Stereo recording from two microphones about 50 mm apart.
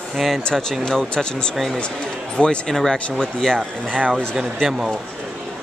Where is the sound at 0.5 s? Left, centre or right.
Centre.